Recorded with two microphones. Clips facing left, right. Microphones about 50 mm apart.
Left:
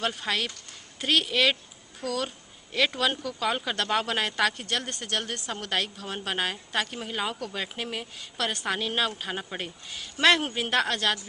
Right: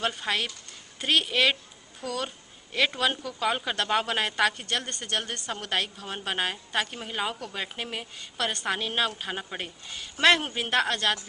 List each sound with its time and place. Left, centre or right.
0.0 s a woman's voice: centre